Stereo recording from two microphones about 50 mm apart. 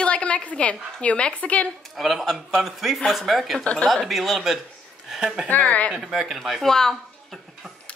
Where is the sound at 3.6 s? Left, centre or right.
Left.